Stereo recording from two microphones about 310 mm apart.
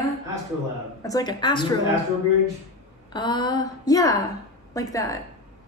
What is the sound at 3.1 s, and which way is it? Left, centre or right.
Speech, centre.